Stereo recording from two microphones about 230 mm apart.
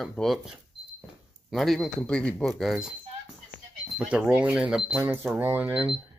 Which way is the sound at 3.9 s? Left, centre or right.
Centre.